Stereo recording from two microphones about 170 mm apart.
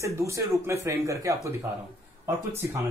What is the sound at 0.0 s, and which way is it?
Speech, 15° right (ahead or behind).